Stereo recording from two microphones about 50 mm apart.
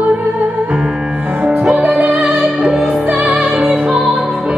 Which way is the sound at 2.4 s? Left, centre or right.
Centre.